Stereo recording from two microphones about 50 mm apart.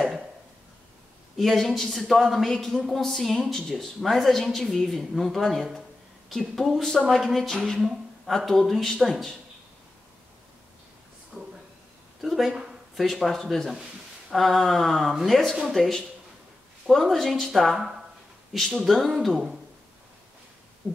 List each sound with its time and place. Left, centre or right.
1.3 s speech: centre
11.3 s a sound: centre
13.3 s speech: centre
20.8 s hoot: right